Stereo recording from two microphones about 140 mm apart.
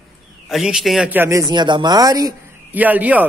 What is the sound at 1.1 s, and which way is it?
Speech, 20° right (ahead or behind).